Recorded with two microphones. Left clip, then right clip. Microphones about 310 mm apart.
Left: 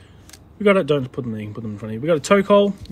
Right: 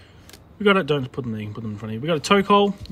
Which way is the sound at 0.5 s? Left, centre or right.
Centre.